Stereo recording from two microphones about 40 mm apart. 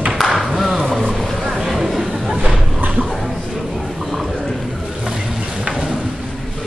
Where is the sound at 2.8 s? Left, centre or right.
Right.